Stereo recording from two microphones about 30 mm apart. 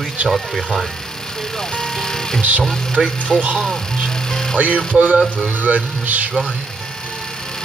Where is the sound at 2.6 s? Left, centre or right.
Centre.